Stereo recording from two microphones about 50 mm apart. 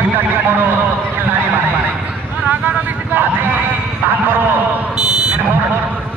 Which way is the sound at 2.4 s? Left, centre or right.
Right.